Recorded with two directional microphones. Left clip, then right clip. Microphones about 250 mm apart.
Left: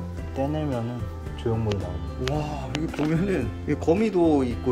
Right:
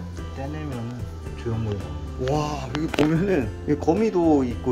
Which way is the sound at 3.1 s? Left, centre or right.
Centre.